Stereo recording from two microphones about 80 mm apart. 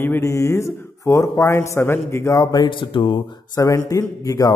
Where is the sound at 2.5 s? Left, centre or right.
Left.